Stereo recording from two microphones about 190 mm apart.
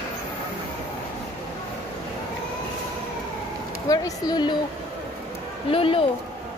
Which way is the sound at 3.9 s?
20° left (ahead or behind).